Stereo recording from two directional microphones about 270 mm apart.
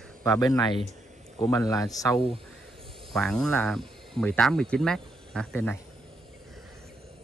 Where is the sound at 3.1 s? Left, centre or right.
Centre.